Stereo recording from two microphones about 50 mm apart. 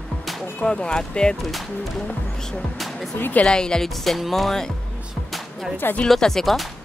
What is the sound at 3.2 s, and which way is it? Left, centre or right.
Speech, left.